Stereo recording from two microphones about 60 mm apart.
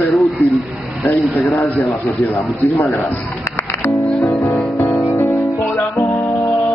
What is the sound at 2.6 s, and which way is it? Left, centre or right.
Speech, left.